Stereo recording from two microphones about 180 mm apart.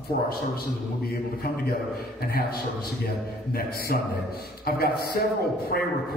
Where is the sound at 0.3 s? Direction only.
60° left (ahead or behind).